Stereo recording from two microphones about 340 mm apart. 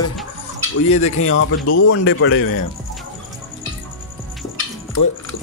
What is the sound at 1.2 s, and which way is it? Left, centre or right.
A man's voice, left.